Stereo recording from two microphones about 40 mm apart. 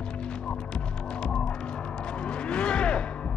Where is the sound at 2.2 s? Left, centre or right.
Left.